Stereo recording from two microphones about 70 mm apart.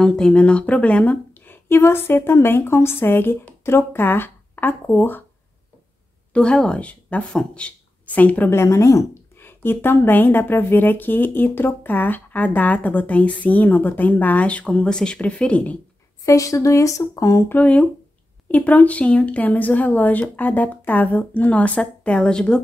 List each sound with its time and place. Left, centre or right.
0.0 s speech: centre; by 5.2 s left
6.3 s speech: centre
8.5 s speech: left
9.4 s speech: left
16.3 s speech: left
17.5 s speech: left